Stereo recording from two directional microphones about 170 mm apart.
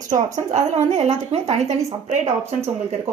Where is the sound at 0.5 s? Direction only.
40° right (ahead or behind).